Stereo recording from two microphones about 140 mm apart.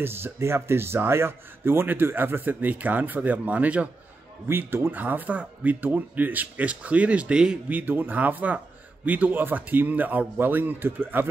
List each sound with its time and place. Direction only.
0.0 s speech: 15° right (ahead or behind)